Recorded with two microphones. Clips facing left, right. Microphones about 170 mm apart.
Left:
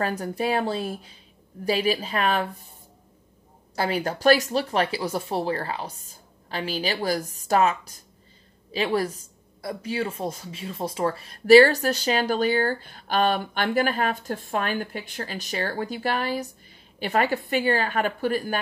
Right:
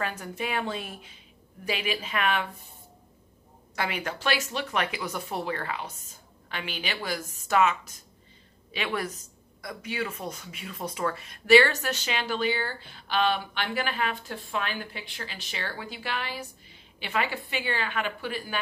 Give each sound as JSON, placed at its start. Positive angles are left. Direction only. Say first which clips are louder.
{"t": 0.0, "sound": "speech", "louder": "left 7 dB", "side_deg": 35}
{"t": 3.7, "sound": "speech", "louder": "left 6 dB", "side_deg": 35}